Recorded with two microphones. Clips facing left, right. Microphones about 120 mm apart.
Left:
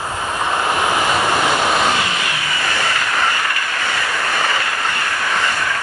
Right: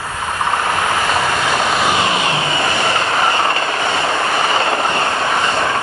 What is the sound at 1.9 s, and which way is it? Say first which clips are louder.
Vehicle: right 5 dB; 25° right (ahead or behind).